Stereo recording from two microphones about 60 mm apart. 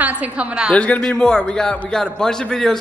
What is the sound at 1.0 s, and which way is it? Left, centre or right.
A man's voice, centre.